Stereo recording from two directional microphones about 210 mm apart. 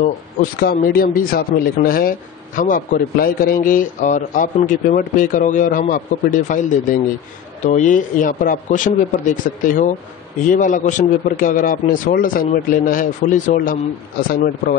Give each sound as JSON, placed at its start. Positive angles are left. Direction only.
{"t": 0.6, "sound": "speech", "side_deg": 45}